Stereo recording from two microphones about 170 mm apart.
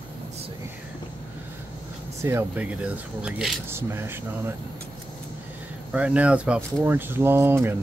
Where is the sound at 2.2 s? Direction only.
10° right (ahead or behind).